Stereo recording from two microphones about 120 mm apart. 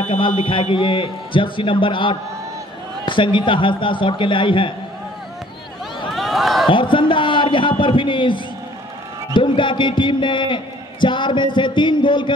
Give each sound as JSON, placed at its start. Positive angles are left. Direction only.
{"t": 0.4, "sound": "a man's voice", "side_deg": 45}
{"t": 6.1, "sound": "a sound", "side_deg": 0}
{"t": 6.7, "sound": "a man's voice", "side_deg": 45}